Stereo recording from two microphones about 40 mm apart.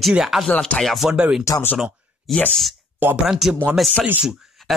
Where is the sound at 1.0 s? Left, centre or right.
Centre.